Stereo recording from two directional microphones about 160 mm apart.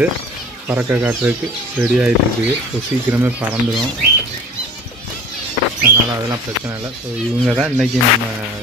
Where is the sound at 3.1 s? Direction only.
15° right (ahead or behind).